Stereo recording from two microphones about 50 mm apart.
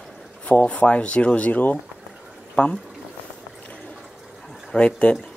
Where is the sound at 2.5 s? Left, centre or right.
Centre.